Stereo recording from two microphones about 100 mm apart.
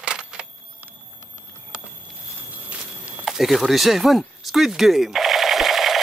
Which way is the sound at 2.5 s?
15° right (ahead or behind).